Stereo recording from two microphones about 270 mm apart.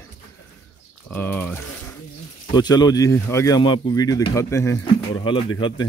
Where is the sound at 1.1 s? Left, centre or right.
Centre.